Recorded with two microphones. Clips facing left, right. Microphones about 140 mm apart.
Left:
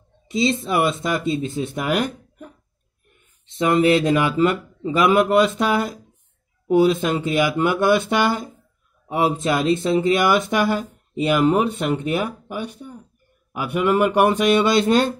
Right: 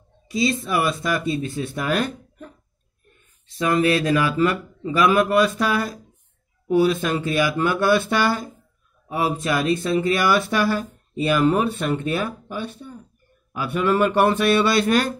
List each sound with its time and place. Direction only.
0.3 s speech: 25° left (ahead or behind)